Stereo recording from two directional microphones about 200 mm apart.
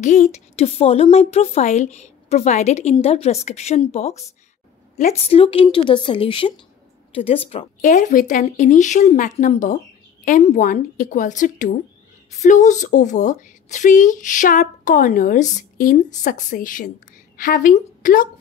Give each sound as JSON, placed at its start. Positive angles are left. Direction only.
{"t": 0.0, "sound": "a woman's voice", "side_deg": 35}